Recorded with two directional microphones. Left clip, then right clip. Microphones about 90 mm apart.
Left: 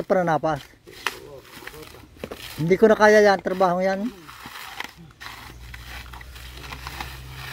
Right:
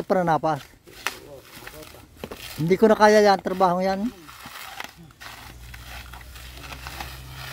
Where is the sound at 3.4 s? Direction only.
40° right (ahead or behind).